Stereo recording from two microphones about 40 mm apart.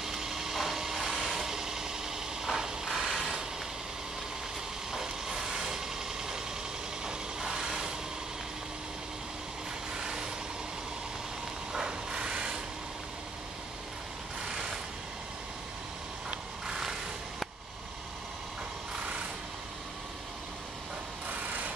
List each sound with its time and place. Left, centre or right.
0.0 s vehicle: centre
3.0 s a sound: centre
4.9 s vehicle: centre
9.9 s vehicle: centre
11.7 s a sound: right
16.6 s vehicle: centre